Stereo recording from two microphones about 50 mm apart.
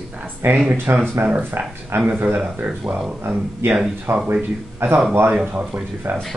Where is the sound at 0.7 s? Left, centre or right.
Right.